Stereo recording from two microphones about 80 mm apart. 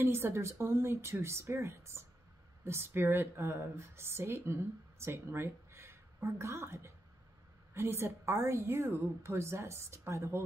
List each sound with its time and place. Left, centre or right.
0.0 s a woman's voice: right